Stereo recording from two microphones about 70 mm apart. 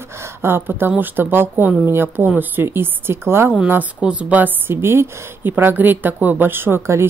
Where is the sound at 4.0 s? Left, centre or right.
Centre.